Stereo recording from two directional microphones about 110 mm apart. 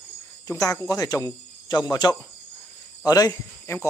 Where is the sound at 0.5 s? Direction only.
30° left (ahead or behind).